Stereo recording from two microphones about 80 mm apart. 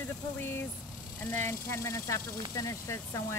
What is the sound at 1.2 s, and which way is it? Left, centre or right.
Speech, left.